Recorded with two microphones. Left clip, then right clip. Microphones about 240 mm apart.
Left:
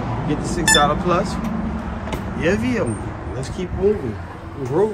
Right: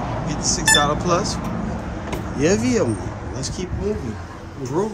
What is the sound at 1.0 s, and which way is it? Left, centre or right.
Speech, centre.